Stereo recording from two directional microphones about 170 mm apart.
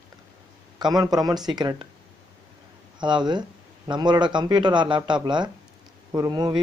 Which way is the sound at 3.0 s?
25° right (ahead or behind).